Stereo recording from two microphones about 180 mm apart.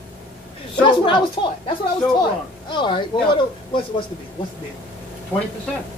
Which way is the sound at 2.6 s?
25° left (ahead or behind).